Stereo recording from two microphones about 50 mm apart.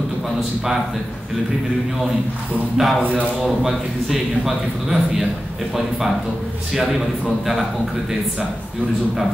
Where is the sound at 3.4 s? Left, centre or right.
Centre.